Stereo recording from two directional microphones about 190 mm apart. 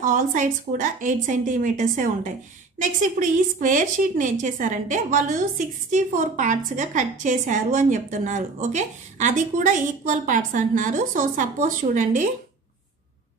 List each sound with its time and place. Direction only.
0.0 s a woman's voice: 45° right (ahead or behind)